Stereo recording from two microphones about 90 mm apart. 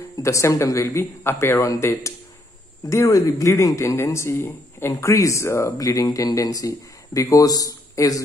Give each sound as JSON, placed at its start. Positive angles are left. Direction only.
{"t": 0.2, "sound": "speech", "side_deg": 35}